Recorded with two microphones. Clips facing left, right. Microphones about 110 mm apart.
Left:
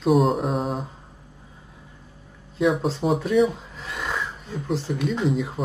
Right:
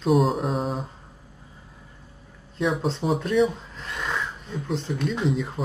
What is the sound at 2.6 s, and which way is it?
Speech, centre (ahead or behind).